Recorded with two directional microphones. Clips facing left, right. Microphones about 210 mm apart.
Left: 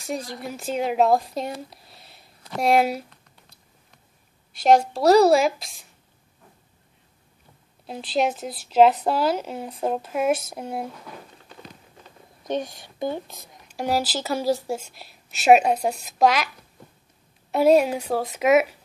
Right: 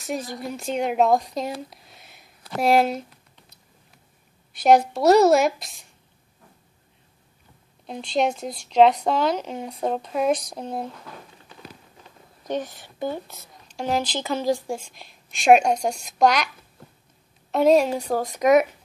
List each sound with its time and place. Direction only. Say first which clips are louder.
0.0 s speech: right 1 dB; centre (ahead or behind)
1.9 s a sound: even; 30° left (ahead or behind)
2.6 s speech: right 1 dB; centre (ahead or behind)
4.7 s speech: left 1 dB; centre (ahead or behind)
7.8 s speech: even; 5° left (ahead or behind)
12.4 s speech: left 1 dB; 15° left (ahead or behind)
17.5 s speech: even; 5° left (ahead or behind)